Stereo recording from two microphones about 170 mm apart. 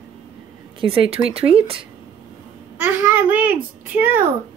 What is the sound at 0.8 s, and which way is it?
Speech, 30° right (ahead or behind).